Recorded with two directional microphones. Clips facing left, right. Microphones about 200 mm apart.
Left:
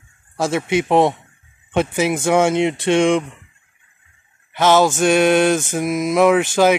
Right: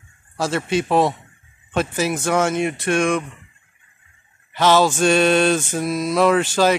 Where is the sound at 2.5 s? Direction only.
25° left (ahead or behind).